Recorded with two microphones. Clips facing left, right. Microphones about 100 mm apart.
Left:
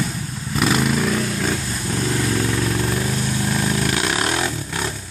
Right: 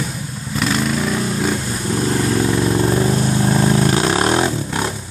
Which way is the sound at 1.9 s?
30° right (ahead or behind).